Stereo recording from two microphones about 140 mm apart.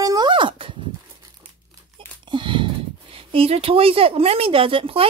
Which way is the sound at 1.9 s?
35° right (ahead or behind).